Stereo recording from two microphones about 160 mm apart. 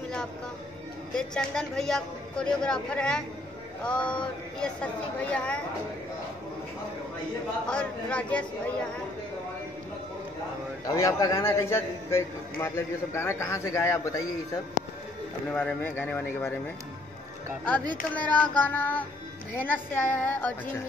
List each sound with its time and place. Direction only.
1.1 s a man's voice: 5° left (ahead or behind)
7.6 s a man's voice: 5° left (ahead or behind)
10.9 s a man's voice: 25° left (ahead or behind)
18.1 s a man's voice: 10° left (ahead or behind)